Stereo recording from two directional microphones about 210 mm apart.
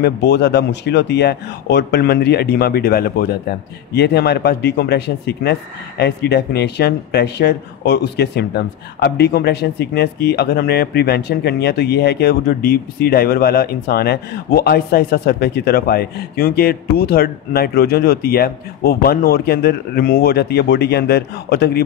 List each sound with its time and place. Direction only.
0.0 s a man's voice: 55° left (ahead or behind)